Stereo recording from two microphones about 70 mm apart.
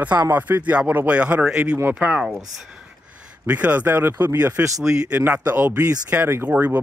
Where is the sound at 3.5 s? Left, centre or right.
Right.